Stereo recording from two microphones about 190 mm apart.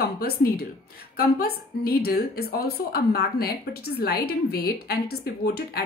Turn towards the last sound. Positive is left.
turn(degrees=55)  # may be behind; listen again after turning